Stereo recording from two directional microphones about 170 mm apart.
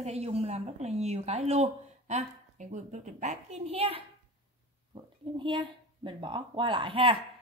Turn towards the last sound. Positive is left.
turn(degrees=-30)  # may be behind; listen again after turning